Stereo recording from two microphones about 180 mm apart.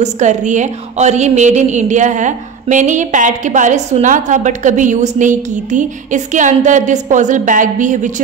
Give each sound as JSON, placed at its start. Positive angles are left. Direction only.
{"t": 0.0, "sound": "a woman's voice", "side_deg": -40}